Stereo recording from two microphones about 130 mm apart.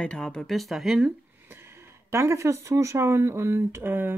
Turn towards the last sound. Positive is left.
turn(degrees=-15)  # may be behind; listen again after turning